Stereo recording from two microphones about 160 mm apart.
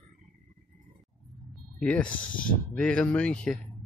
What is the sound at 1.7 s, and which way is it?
Speech, 5° left (ahead or behind).